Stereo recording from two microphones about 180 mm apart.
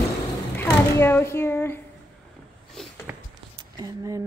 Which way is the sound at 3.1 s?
15° right (ahead or behind).